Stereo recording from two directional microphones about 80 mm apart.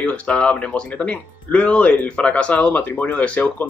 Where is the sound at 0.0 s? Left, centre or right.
Centre.